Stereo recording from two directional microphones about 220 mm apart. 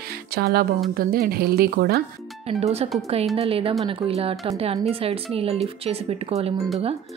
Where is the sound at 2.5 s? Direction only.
30° right (ahead or behind).